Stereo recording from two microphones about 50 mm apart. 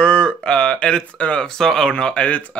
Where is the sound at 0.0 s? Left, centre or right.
Left.